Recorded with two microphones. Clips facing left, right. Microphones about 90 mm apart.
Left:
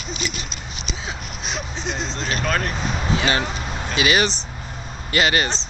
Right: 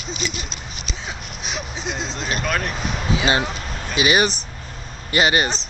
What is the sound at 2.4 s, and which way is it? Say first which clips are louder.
Speech: left 1 dB; centre (ahead or behind).